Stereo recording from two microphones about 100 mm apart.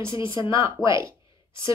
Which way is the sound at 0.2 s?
55° left (ahead or behind).